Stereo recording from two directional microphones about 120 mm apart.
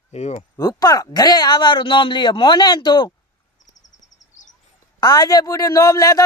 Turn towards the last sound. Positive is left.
turn(degrees=25)  # may be behind; listen again after turning